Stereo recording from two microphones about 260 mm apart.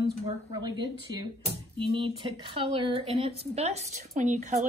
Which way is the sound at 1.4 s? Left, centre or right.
Centre.